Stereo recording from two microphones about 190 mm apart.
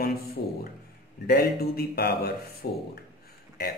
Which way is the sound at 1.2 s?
55° left (ahead or behind).